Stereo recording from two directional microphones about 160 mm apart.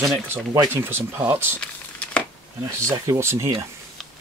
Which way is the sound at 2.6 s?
20° right (ahead or behind).